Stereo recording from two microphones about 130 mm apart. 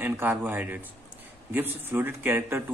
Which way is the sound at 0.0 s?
15° right (ahead or behind).